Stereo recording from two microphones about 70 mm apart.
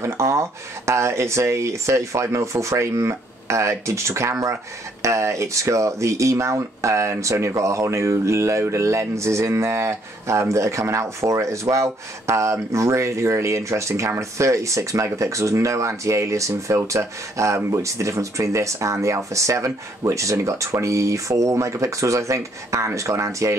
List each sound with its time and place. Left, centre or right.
0.0 s speech: right